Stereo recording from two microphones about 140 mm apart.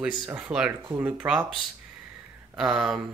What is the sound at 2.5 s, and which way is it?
Speech, 5° right (ahead or behind).